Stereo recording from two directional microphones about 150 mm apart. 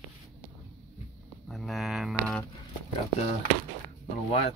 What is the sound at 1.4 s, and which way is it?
Speech, centre (ahead or behind).